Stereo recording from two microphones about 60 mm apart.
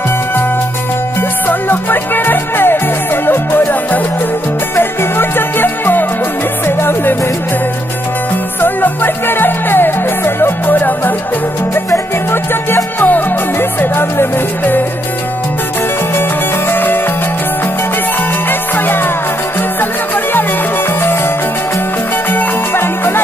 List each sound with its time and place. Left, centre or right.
1.5 s music: left
8.5 s music: left
11.7 s music: left
13.0 s music: left
16.2 s music: left
18.5 s music: left
21.0 s music: left
22.3 s music: left